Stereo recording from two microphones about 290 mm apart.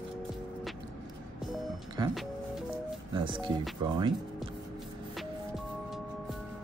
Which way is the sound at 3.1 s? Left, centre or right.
Centre.